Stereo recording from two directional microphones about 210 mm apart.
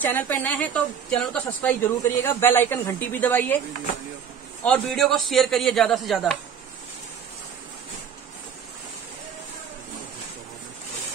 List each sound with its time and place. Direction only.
0.0 s a woman's voice: 10° left (ahead or behind)
4.6 s a man's voice: 5° left (ahead or behind)